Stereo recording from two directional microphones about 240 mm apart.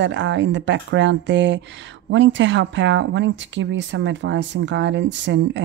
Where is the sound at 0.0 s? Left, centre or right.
Right.